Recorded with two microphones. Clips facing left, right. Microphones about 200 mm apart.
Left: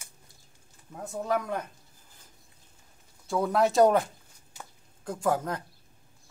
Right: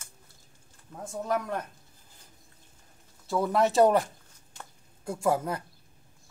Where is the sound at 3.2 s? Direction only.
Centre (ahead or behind).